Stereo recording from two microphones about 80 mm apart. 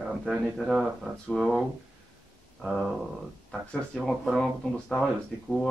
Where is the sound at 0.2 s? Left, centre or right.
Centre.